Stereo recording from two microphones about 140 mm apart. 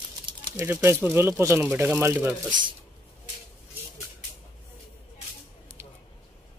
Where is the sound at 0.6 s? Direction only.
15° right (ahead or behind).